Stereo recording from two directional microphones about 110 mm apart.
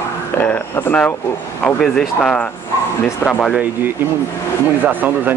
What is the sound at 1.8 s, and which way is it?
Speech, 5° left (ahead or behind).